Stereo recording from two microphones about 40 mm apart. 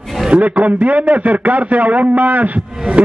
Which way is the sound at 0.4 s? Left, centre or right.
Right.